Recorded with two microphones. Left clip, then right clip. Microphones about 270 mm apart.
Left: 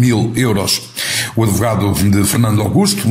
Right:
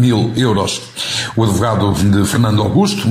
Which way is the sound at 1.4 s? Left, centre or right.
Left.